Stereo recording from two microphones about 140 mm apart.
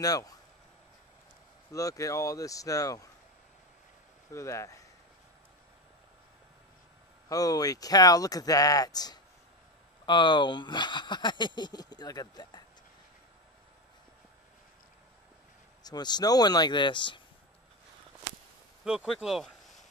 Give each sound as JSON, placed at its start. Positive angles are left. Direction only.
{"t": 0.0, "sound": "speech", "side_deg": 25}
{"t": 1.7, "sound": "speech", "side_deg": 25}
{"t": 4.3, "sound": "speech", "side_deg": 20}
{"t": 7.2, "sound": "speech", "side_deg": 25}
{"t": 15.8, "sound": "speech", "side_deg": 30}
{"t": 18.9, "sound": "speech", "side_deg": -5}